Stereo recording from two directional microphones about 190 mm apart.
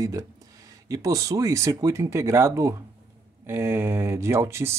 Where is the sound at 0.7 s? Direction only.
20° right (ahead or behind).